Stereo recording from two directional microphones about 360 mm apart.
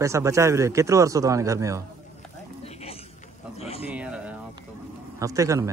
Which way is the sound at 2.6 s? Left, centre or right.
Centre.